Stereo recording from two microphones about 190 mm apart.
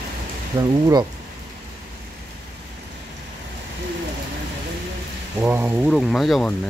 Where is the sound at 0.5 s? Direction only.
20° right (ahead or behind).